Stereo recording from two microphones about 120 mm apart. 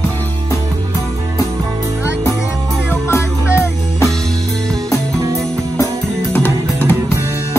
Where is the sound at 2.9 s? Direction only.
20° left (ahead or behind).